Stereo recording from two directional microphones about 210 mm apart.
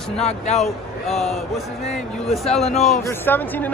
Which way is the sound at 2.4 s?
30° left (ahead or behind).